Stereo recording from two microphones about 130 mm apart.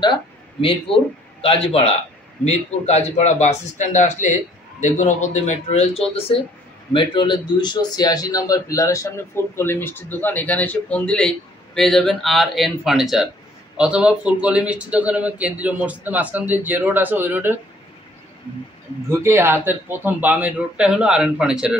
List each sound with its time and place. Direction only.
0.0 s speech: 40° left (ahead or behind); by 5.0 s 70° left (ahead or behind)
5.3 s speech: 60° left (ahead or behind)
6.9 s a man's voice: 40° left (ahead or behind); by 17.6 s 15° right (ahead or behind)
19.0 s speech: 20° right (ahead or behind)